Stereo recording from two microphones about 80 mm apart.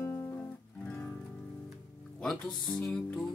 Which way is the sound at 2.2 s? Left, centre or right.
Centre.